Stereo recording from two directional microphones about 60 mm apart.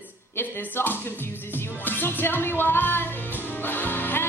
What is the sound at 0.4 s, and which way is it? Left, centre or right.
Speech, left.